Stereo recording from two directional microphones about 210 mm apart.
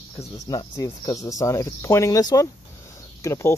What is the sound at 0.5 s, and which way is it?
Speech, 20° left (ahead or behind).